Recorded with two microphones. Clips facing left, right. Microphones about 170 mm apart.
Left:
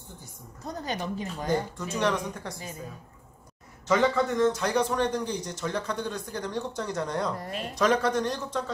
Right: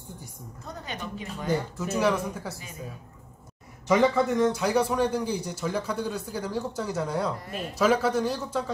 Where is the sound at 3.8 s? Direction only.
10° right (ahead or behind).